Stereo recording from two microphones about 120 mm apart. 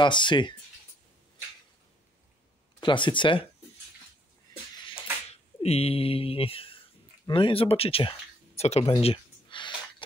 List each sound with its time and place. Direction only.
0.0 s speech: 40° left (ahead or behind)
2.8 s speech: 40° left (ahead or behind)
5.3 s speech: 60° left (ahead or behind)
8.9 s a sound: 45° left (ahead or behind)